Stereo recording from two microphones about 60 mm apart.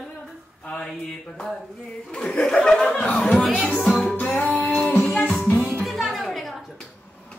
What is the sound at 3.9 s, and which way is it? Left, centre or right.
Music, centre.